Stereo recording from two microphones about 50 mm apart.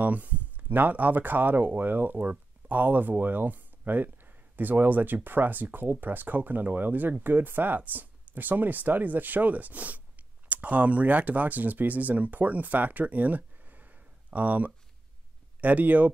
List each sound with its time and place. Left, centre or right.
0.0 s speech: right